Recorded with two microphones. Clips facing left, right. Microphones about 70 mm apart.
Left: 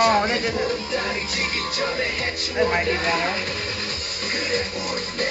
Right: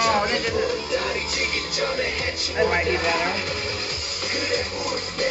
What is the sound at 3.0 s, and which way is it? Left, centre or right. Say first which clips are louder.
Speech: even; left.